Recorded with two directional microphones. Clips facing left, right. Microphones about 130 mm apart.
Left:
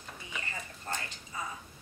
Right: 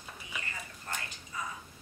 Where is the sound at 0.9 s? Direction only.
30° left (ahead or behind).